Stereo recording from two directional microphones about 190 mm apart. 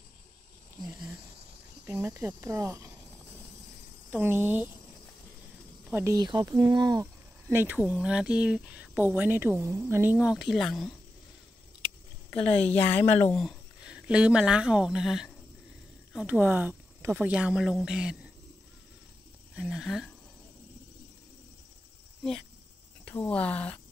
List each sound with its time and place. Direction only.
1.9 s speech: 10° right (ahead or behind)
4.1 s speech: 10° right (ahead or behind)
5.9 s speech: 15° right (ahead or behind)
12.3 s speech: 5° left (ahead or behind)
19.5 s speech: 5° right (ahead or behind)
23.0 s speech: 5° left (ahead or behind)